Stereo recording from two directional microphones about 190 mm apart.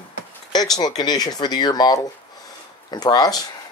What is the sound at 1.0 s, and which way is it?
Speech, 20° left (ahead or behind).